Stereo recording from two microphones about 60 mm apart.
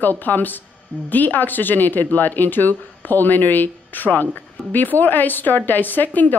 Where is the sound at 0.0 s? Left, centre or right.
Left.